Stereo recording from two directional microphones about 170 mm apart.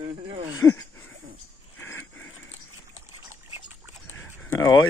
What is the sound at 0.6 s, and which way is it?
Speech, 15° left (ahead or behind).